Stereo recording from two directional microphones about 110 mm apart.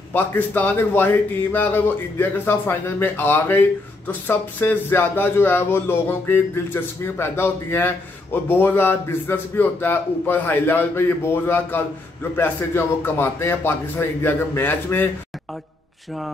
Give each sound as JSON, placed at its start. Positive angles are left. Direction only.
{"t": 0.1, "sound": "a man's voice", "side_deg": 15}